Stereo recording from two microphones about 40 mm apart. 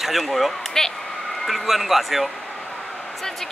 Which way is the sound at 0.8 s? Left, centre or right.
Centre.